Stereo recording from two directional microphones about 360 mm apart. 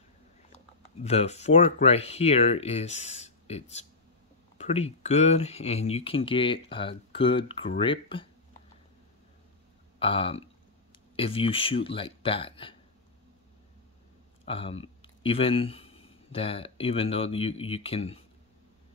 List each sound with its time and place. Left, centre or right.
1.0 s speech: centre
9.9 s speech: centre
14.4 s speech: centre